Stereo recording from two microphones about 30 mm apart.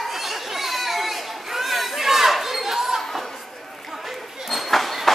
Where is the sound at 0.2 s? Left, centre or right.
Centre.